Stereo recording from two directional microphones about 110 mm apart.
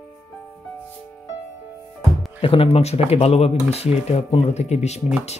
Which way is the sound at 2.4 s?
55° left (ahead or behind).